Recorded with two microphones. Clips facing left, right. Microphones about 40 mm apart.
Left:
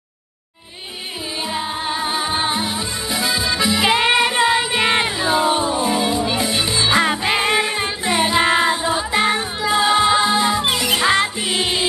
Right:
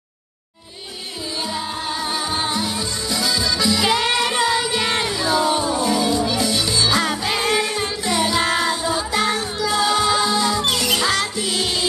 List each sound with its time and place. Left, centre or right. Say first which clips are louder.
1.5 s music: left 5 dB; left